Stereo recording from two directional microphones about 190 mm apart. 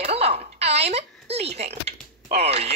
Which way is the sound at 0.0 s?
35° right (ahead or behind).